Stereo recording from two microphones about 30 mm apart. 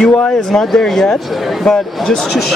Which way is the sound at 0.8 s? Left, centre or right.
Left.